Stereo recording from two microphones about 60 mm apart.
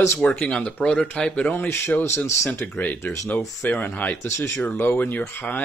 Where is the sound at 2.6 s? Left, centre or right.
Left.